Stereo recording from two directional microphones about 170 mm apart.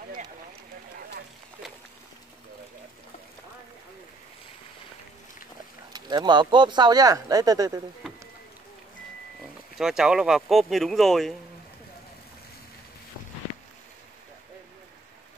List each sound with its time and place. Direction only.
5.9 s speech: 25° right (ahead or behind)
9.8 s speech: 5° right (ahead or behind)